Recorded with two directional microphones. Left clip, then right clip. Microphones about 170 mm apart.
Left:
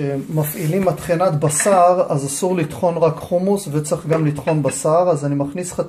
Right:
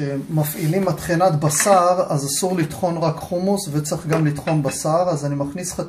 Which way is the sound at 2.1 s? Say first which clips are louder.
Left 2 dB; 30° left (ahead or behind).